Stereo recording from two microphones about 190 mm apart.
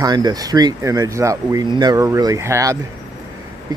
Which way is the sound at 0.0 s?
20° right (ahead or behind).